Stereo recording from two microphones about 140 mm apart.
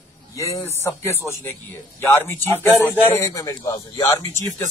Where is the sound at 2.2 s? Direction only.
15° left (ahead or behind).